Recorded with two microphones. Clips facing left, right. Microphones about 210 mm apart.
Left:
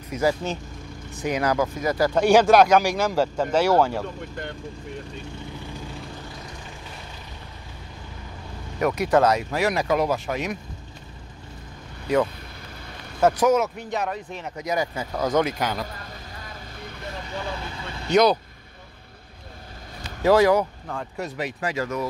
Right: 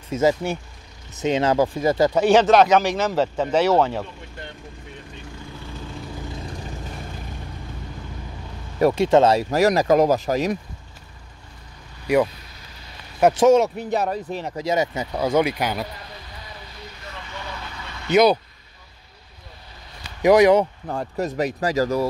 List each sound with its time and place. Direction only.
0.1 s speech: 20° right (ahead or behind)
2.3 s speech: 10° left (ahead or behind)
8.7 s speech: 30° right (ahead or behind)
12.1 s speech: 10° right (ahead or behind)
13.2 s speech: 25° right (ahead or behind)
15.1 s speech: 10° right (ahead or behind)
17.3 s speech: 30° left (ahead or behind)
18.1 s speech: 10° right (ahead or behind)
20.2 s speech: 15° right (ahead or behind)
21.2 s speech: 40° right (ahead or behind)